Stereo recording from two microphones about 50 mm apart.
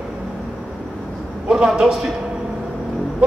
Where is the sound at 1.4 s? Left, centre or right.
Centre.